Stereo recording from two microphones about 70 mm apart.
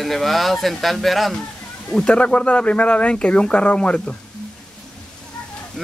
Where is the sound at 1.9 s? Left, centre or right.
Centre.